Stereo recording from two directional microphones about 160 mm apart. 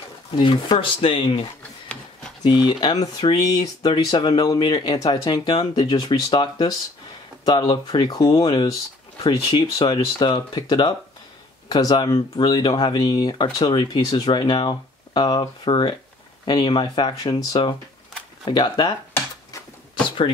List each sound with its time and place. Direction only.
0.4 s speech: 30° left (ahead or behind)
2.4 s speech: 25° left (ahead or behind)